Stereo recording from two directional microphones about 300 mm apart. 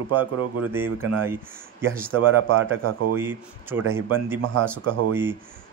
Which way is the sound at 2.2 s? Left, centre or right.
Right.